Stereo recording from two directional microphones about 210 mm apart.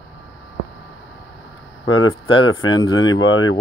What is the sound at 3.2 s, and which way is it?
Speech, 75° left (ahead or behind).